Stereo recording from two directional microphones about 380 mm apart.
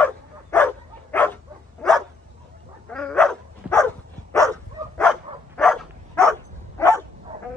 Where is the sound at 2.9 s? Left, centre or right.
Centre.